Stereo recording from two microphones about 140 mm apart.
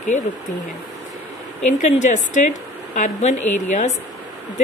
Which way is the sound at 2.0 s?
60° left (ahead or behind).